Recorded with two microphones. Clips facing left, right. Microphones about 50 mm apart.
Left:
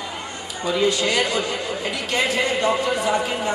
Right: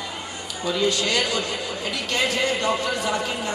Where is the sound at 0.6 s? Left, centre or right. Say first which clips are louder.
Left 3 dB; left.